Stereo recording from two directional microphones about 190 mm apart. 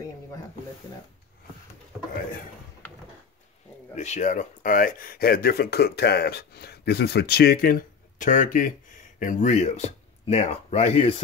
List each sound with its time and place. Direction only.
3.9 s speech: 40° left (ahead or behind)